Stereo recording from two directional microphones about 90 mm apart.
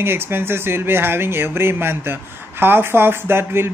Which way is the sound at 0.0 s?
25° right (ahead or behind).